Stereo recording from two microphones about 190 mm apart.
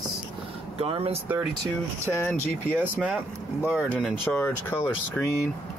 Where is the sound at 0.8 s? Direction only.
30° right (ahead or behind).